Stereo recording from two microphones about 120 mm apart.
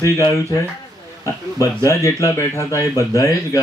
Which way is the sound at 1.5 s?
25° left (ahead or behind).